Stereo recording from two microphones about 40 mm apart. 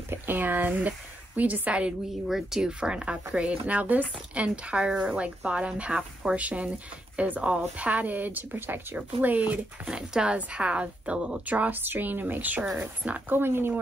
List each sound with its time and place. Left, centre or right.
0.1 s speech: right
2.2 s speech: centre
2.6 s speech: right
6.3 s speech: right
7.4 s speech: right
9.8 s speech: right
13.3 s speech: right